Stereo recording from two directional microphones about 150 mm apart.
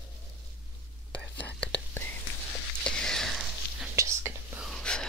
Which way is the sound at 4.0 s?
15° right (ahead or behind).